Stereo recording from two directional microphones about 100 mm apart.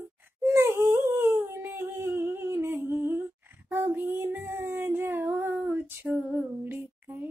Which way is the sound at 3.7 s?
20° right (ahead or behind).